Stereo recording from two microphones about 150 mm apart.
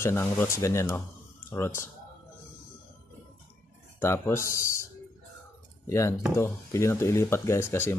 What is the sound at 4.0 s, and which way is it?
Speech, 20° left (ahead or behind).